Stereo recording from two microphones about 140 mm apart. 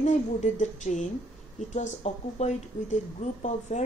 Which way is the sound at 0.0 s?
60° left (ahead or behind).